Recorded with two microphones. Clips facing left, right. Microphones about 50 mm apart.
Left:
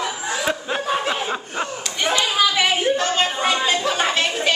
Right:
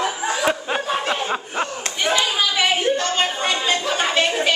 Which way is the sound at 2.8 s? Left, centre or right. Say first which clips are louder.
Left 1 dB; centre.